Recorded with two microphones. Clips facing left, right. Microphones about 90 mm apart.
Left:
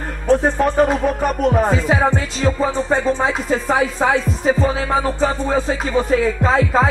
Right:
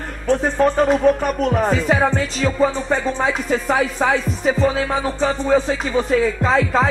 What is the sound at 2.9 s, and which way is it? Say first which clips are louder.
Speech: left 2 dB; 25° left (ahead or behind).